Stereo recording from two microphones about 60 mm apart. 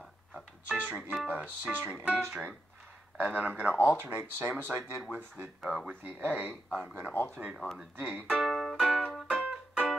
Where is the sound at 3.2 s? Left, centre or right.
Right.